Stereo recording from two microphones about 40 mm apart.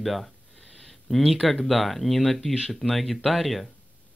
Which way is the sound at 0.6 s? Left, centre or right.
Centre.